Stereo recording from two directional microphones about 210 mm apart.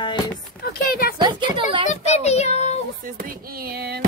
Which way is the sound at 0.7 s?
45° left (ahead or behind).